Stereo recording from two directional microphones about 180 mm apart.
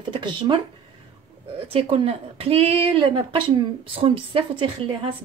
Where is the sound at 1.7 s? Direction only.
30° right (ahead or behind).